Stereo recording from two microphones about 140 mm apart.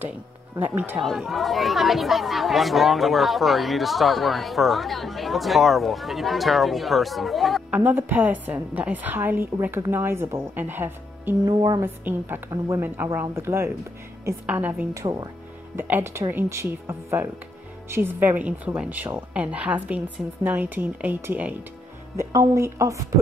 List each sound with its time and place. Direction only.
0.6 s a woman's voice: 15° right (ahead or behind)
1.0 s speech: centre (ahead or behind)
7.8 s a woman's voice: 10° right (ahead or behind)
11.4 s speech: 30° right (ahead or behind)
11.8 s a woman's voice: 15° right (ahead or behind)
22.1 s speech: 20° right (ahead or behind)